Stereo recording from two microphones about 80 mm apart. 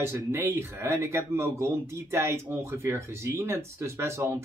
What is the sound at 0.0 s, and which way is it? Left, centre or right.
Speech, right.